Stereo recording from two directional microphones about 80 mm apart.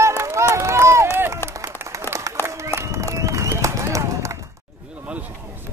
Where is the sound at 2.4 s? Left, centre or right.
Right.